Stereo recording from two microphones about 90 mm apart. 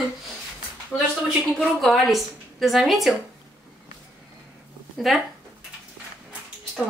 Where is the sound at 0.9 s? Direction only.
25° left (ahead or behind).